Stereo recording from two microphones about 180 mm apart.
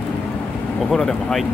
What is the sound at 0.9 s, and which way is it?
Speech, centre (ahead or behind).